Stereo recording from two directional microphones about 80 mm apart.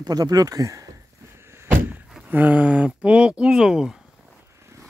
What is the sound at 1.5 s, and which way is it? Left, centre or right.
Door, right.